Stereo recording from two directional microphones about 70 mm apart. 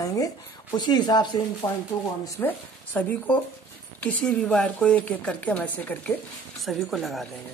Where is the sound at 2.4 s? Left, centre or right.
Left.